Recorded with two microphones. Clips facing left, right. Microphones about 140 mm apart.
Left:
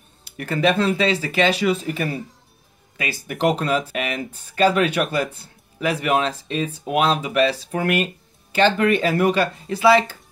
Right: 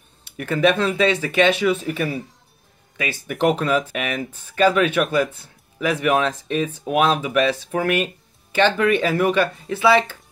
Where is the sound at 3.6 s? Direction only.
35° left (ahead or behind).